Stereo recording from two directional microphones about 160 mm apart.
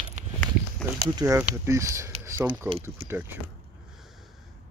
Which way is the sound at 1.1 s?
20° right (ahead or behind).